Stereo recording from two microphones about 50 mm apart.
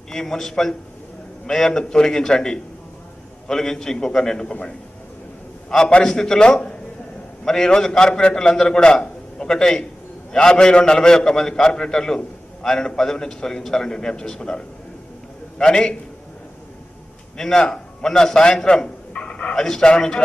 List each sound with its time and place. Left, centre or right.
0.1 s a man's voice: centre
6.0 s a man's voice: centre
17.4 s a man's voice: centre
19.1 s a sound: left
19.5 s a man's voice: centre